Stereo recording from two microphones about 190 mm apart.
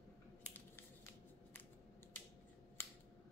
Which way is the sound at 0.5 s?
10° left (ahead or behind).